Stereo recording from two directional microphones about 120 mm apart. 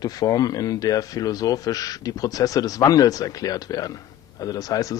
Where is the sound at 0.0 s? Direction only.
30° left (ahead or behind).